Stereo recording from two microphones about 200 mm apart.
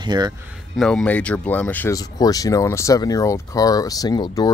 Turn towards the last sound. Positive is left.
turn(degrees=20)  # may be behind; listen again after turning